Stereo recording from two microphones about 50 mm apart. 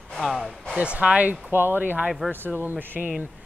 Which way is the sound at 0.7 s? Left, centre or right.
Right.